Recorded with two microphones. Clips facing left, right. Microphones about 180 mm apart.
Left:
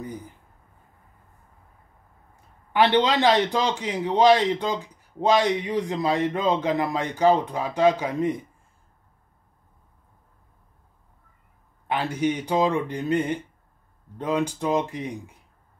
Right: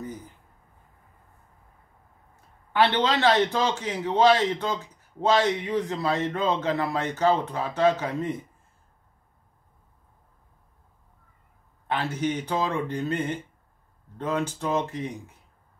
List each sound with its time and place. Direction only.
2.7 s a man's voice: 15° left (ahead or behind)
11.9 s a man's voice: 15° left (ahead or behind)